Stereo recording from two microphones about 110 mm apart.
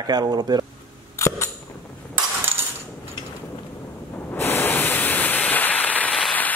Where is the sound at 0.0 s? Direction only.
40° right (ahead or behind).